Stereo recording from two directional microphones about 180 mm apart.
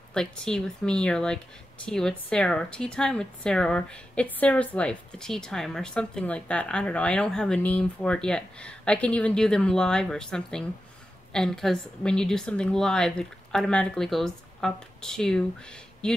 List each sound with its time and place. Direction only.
0.1 s speech: 5° left (ahead or behind)